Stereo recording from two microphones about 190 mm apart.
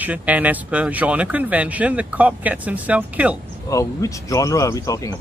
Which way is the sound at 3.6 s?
15° left (ahead or behind).